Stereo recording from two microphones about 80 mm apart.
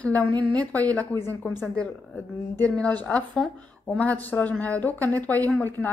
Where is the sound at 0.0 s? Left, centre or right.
Centre.